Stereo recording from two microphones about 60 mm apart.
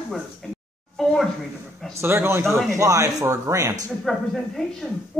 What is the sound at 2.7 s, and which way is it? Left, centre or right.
Speech, right.